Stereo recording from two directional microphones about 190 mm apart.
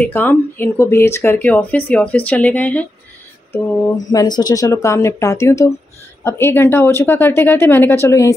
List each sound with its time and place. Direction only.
0.0 s speech: 10° left (ahead or behind)
4.1 s speech: 20° left (ahead or behind)